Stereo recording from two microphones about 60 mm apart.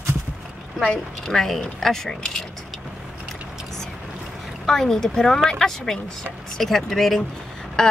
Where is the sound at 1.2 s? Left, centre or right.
Centre.